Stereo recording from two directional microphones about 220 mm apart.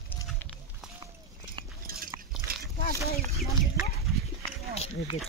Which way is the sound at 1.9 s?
40° right (ahead or behind).